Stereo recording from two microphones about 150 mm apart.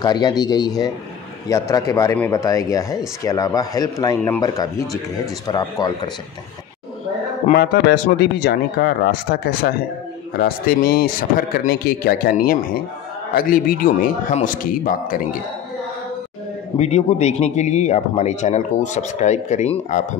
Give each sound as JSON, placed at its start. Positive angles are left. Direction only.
{"t": 0.0, "sound": "a man's voice", "side_deg": 25}
{"t": 7.5, "sound": "a man's voice", "side_deg": 90}
{"t": 14.3, "sound": "speech", "side_deg": 60}
{"t": 16.7, "sound": "speech", "side_deg": 50}